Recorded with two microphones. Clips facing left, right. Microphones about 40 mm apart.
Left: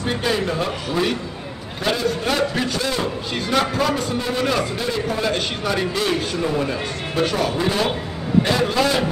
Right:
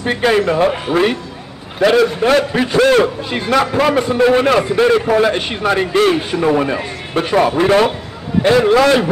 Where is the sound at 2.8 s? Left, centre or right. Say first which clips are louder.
Right 12 dB; right.